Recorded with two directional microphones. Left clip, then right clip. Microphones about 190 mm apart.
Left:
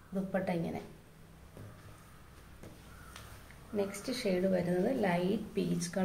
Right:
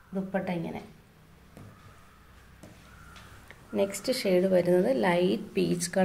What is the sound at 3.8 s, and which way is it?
A woman's voice, 50° right (ahead or behind).